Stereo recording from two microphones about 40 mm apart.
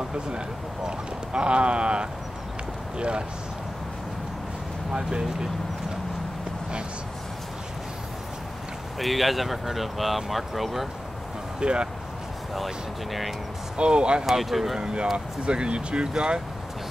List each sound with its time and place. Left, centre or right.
0.8 s speech: right
4.9 s speech: centre
9.0 s speech: centre
11.6 s speech: right
12.5 s speech: centre
13.7 s speech: right
14.2 s speech: centre
14.8 s speech: right